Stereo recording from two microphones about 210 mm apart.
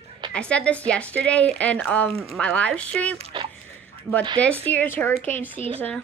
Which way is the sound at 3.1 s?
25° right (ahead or behind).